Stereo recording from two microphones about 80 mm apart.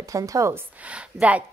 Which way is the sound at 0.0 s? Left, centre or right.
Right.